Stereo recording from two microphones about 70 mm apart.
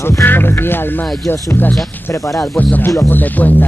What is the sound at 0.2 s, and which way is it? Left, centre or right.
Music, left.